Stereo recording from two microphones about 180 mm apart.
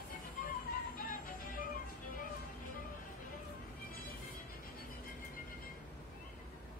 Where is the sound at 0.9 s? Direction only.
50° left (ahead or behind).